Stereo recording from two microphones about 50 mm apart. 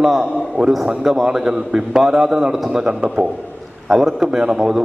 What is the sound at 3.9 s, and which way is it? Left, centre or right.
Speech, centre.